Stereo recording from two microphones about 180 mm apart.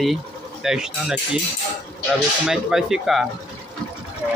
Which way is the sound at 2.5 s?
5° right (ahead or behind).